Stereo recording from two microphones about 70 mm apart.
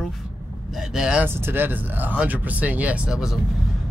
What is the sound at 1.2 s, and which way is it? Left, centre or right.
Speech, right.